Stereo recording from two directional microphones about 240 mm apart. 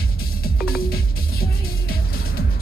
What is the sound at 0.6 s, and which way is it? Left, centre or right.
Music, left.